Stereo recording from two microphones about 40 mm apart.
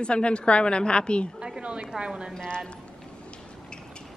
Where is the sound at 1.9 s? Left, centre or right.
Right.